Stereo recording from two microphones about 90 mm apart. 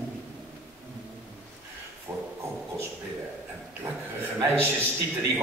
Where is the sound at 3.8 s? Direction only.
30° right (ahead or behind).